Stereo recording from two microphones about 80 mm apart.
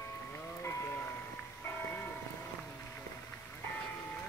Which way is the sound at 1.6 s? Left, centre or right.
Left.